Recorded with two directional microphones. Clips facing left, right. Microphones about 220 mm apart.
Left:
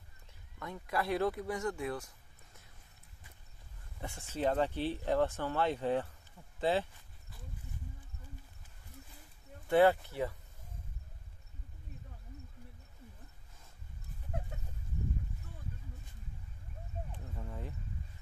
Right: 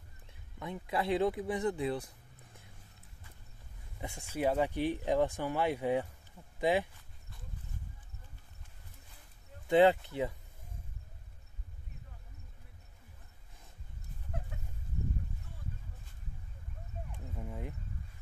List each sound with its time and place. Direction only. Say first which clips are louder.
0.6 s speech: right 1 dB; 20° right (ahead or behind)
4.0 s speech: right 1 dB; 15° right (ahead or behind)
9.7 s speech: right 1 dB; 15° right (ahead or behind)
17.4 s a sound: right 3 dB; 15° right (ahead or behind)